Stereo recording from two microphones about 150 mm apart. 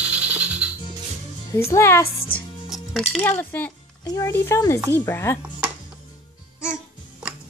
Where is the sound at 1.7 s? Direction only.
15° left (ahead or behind).